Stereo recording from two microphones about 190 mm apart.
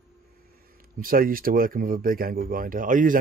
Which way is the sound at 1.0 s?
50° right (ahead or behind).